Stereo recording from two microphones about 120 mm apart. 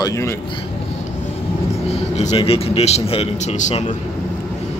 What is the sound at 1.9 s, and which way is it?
A man's voice, 55° left (ahead or behind).